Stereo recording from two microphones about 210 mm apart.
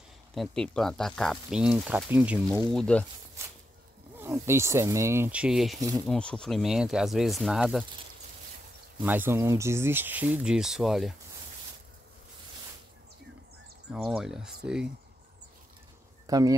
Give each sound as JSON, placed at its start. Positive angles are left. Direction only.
{"t": 0.3, "sound": "speech", "side_deg": 0}
{"t": 3.4, "sound": "a sound", "side_deg": -15}
{"t": 4.2, "sound": "speech", "side_deg": -10}
{"t": 5.8, "sound": "speech", "side_deg": -15}
{"t": 6.0, "sound": "speech", "side_deg": 5}
{"t": 9.0, "sound": "speech", "side_deg": -10}
{"t": 13.9, "sound": "speech", "side_deg": -5}
{"t": 16.3, "sound": "speech", "side_deg": -15}